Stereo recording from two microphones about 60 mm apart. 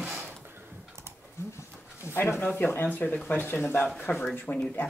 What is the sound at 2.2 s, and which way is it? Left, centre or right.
Speech, left.